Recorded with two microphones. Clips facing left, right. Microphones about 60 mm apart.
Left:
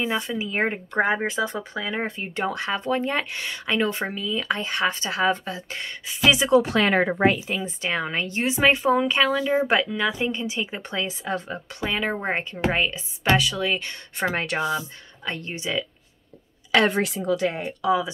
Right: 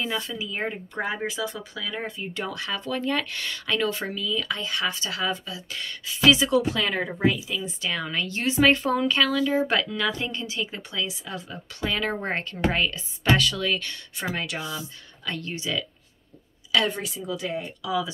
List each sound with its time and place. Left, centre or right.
0.0 s speech: left
0.5 s speech: left
6.8 s speech: left
7.3 s speech: left
10.8 s speech: left
11.8 s speech: centre
14.1 s speech: left
15.2 s speech: left
16.9 s a woman's voice: left